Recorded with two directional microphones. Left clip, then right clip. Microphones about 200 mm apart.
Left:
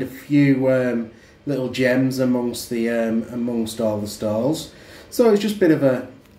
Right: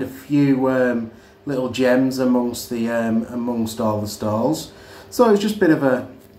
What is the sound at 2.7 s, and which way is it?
Speech, 55° right (ahead or behind).